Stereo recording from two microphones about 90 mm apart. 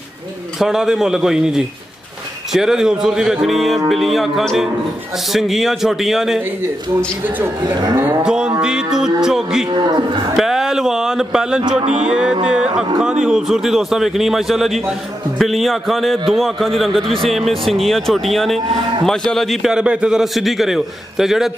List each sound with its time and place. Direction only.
0.6 s a man's voice: 5° right (ahead or behind)
7.2 s a man's voice: 20° right (ahead or behind)
8.2 s music: 10° right (ahead or behind)
13.0 s a man's voice: 5° right (ahead or behind)